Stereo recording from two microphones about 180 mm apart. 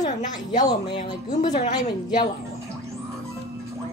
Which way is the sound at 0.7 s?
25° left (ahead or behind).